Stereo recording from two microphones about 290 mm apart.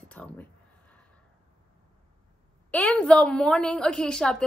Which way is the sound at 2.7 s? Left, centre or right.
Centre.